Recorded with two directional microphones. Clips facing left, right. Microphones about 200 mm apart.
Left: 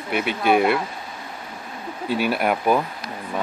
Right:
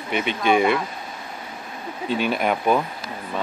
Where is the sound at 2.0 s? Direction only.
10° left (ahead or behind).